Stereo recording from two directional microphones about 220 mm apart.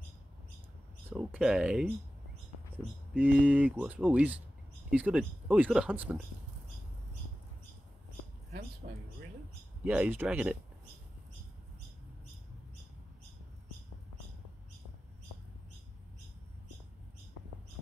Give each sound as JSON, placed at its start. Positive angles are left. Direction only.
{"t": 1.1, "sound": "speech", "side_deg": -5}
{"t": 8.8, "sound": "speech", "side_deg": -40}
{"t": 9.8, "sound": "speech", "side_deg": -5}